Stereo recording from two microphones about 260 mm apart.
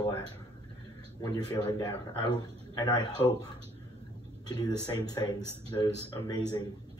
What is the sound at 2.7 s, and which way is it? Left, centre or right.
Speech, centre.